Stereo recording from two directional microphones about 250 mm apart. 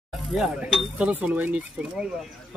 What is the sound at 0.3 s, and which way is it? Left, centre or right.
A man's voice, centre.